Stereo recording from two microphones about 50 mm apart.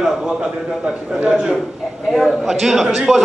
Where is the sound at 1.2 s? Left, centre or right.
Right.